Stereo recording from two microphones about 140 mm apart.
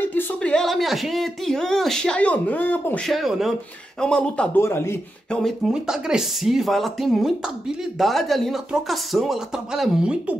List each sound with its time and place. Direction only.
0.0 s speech: 15° left (ahead or behind)
3.1 s speech: centre (ahead or behind)
4.6 s speech: 20° left (ahead or behind)
5.3 s speech: centre (ahead or behind)